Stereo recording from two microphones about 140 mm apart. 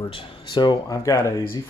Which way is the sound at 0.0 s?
35° left (ahead or behind).